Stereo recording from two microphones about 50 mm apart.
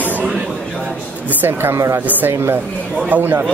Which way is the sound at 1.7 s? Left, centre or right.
Right.